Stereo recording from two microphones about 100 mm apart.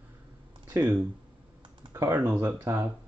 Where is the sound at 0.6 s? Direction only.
30° right (ahead or behind).